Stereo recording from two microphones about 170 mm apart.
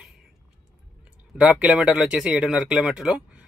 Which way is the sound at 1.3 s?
5° right (ahead or behind).